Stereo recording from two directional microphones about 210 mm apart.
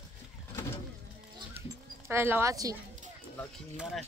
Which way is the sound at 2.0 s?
10° right (ahead or behind).